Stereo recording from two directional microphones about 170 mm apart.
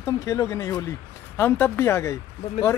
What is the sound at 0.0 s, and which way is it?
Speech, 15° left (ahead or behind).